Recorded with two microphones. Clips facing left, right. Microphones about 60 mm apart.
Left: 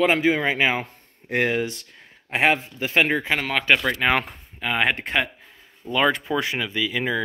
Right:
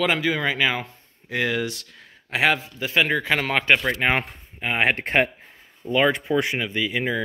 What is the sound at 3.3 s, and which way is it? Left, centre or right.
Speech, centre.